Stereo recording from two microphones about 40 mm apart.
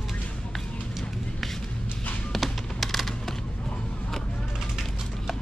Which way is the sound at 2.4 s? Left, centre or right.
Centre.